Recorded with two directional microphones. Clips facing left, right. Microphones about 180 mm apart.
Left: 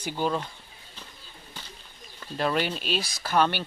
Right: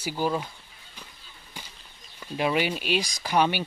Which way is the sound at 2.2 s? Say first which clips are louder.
Right 1 dB; 10° right (ahead or behind).